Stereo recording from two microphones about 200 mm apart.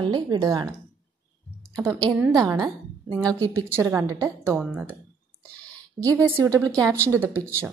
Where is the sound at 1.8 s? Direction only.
15° right (ahead or behind).